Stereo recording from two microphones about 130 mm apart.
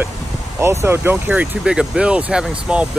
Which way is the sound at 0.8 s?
15° right (ahead or behind).